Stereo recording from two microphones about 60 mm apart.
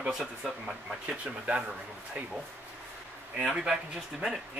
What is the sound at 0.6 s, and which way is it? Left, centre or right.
Speech, centre.